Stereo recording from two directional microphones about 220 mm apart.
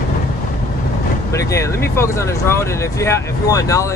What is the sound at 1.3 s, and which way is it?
Speech, 15° left (ahead or behind).